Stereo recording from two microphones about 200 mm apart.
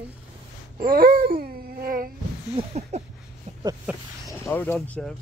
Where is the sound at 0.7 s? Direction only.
50° right (ahead or behind).